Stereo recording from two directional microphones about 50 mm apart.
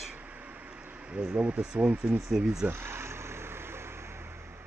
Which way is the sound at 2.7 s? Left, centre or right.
Right.